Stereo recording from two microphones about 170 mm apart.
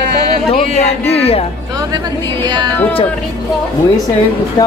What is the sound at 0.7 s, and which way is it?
Speech, 35° left (ahead or behind).